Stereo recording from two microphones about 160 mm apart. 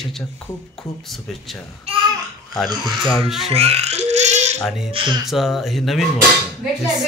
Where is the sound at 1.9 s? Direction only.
40° right (ahead or behind).